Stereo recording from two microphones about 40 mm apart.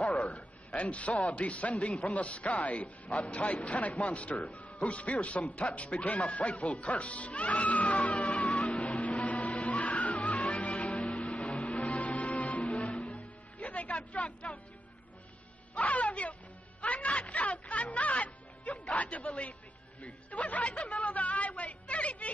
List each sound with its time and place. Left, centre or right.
0.3 s a man's voice: left
9.0 s music: left
15.7 s music: left
20.0 s a woman's voice: left